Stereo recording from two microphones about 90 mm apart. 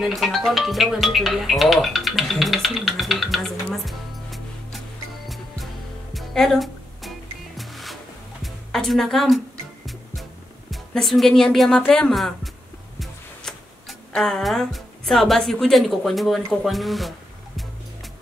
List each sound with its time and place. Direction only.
0.0 s speech: centre (ahead or behind)
6.1 s music: 5° left (ahead or behind)
10.9 s speech: 5° left (ahead or behind)
13.0 s music: 5° left (ahead or behind)
16.6 s speech: centre (ahead or behind)